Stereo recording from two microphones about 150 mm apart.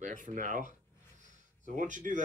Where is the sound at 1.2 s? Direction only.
55° right (ahead or behind).